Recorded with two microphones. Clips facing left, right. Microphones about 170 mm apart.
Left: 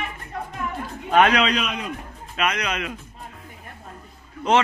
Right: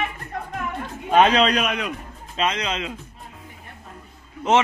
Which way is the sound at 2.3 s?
25° right (ahead or behind).